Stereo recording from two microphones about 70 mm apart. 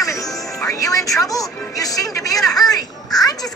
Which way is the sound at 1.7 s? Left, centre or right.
Left.